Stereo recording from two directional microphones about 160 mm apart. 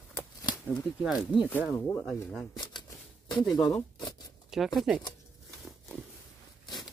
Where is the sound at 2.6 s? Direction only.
30° left (ahead or behind).